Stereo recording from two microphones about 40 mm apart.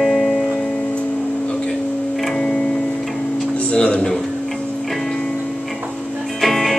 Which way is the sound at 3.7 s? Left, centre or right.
Left.